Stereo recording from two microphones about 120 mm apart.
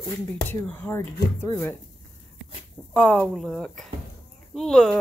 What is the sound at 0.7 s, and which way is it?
Speech, 20° left (ahead or behind).